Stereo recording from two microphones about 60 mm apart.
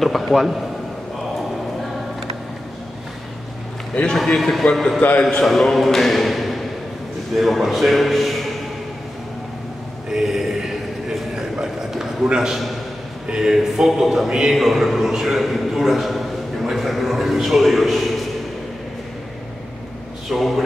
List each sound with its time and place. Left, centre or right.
0.0 s a man's voice: centre
3.9 s a man's voice: centre
4.4 s a man's voice: centre
10.1 s a sound: centre
12.3 s a man's voice: centre
20.2 s a man's voice: centre